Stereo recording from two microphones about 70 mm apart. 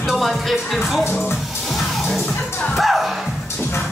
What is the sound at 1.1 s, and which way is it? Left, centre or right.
Speech, left.